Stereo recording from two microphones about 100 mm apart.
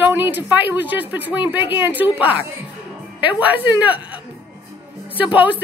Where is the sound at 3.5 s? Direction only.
15° right (ahead or behind).